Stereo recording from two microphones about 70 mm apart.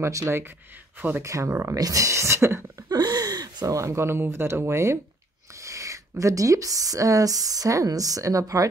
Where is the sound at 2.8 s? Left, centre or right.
Right.